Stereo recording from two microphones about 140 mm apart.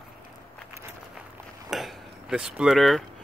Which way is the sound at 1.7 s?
Centre (ahead or behind).